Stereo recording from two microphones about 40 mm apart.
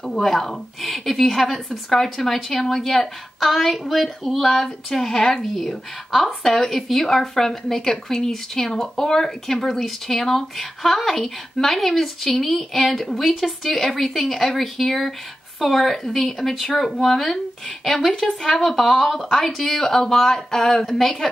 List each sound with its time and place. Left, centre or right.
0.0 s a woman's voice: centre